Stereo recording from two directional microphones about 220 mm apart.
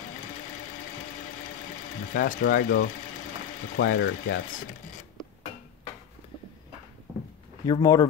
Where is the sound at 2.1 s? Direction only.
40° left (ahead or behind).